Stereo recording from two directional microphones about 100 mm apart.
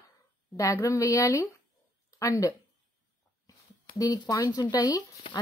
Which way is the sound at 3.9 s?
40° left (ahead or behind).